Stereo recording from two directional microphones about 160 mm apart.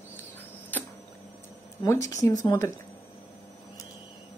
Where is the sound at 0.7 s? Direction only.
10° left (ahead or behind).